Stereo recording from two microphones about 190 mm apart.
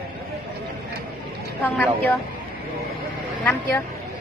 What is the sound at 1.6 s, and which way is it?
Speech, 10° left (ahead or behind).